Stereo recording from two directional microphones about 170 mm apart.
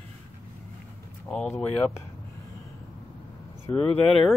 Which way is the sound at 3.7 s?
25° left (ahead or behind).